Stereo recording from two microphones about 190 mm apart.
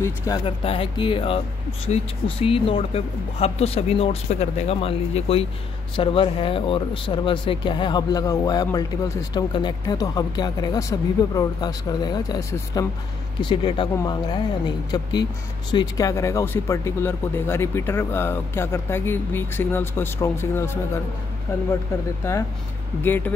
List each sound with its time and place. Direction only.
0.3 s speech: 20° left (ahead or behind)
15.7 s speech: 20° left (ahead or behind)
23.0 s speech: 10° left (ahead or behind)